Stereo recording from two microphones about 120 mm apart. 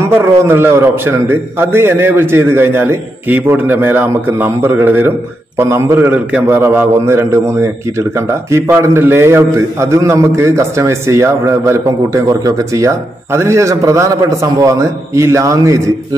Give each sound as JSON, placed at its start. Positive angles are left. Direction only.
{"t": 0.1, "sound": "a man's voice", "side_deg": -20}